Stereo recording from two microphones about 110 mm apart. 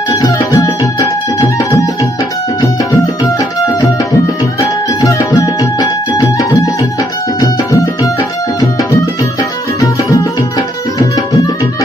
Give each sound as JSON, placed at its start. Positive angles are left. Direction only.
{"t": 0.1, "sound": "music", "side_deg": 35}
{"t": 4.6, "sound": "music", "side_deg": 35}
{"t": 9.4, "sound": "tabla", "side_deg": 35}